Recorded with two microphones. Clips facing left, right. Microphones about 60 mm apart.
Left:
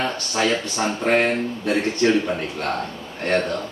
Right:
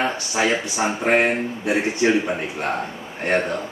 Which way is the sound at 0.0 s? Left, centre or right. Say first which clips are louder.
Right 1 dB; centre.